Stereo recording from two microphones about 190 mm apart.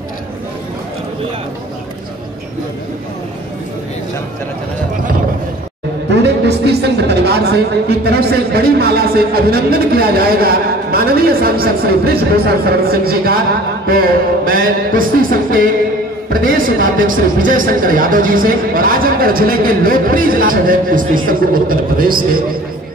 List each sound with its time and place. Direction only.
6.0 s speech: 60° right (ahead or behind)